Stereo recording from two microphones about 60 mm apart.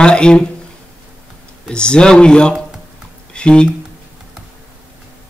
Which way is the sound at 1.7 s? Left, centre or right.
Centre.